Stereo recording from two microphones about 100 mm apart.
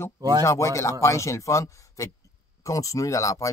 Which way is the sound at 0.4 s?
30° left (ahead or behind).